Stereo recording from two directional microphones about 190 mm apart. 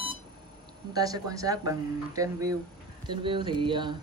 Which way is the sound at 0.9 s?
20° right (ahead or behind).